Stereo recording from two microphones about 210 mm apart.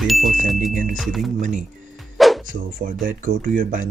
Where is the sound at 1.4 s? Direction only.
35° right (ahead or behind).